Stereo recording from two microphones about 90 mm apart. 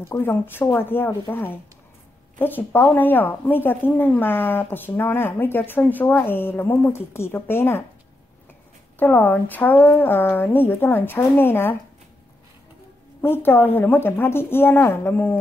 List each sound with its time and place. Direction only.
0.1 s a woman's voice: 25° left (ahead or behind)
8.9 s a woman's voice: 20° left (ahead or behind)
13.2 s a woman's voice: 25° left (ahead or behind)